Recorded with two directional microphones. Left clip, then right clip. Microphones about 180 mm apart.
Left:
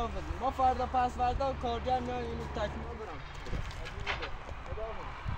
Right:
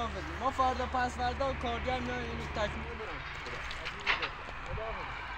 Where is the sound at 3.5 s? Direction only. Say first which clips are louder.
Right 3 dB; 75° left (ahead or behind).